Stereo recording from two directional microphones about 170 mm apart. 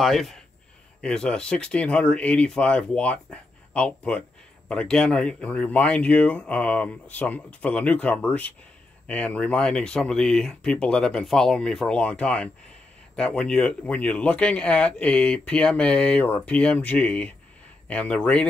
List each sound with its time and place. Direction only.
0.0 s speech: centre (ahead or behind)